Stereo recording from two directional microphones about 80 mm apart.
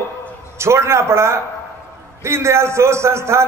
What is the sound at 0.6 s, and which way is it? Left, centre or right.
A man's voice, right.